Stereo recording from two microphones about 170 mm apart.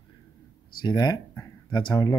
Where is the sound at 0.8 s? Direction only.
20° left (ahead or behind).